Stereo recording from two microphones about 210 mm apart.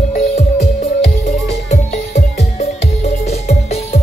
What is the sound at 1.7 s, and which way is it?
Music, 30° left (ahead or behind).